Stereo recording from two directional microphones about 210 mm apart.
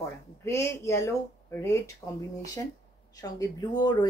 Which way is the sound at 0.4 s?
10° left (ahead or behind).